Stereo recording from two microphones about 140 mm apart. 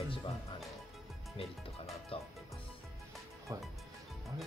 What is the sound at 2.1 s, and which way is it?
Speech, 40° left (ahead or behind).